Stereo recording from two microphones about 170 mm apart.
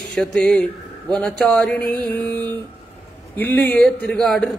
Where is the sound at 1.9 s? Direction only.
10° left (ahead or behind).